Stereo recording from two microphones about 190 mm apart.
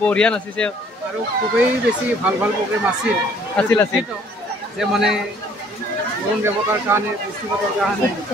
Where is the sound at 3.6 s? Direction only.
10° left (ahead or behind).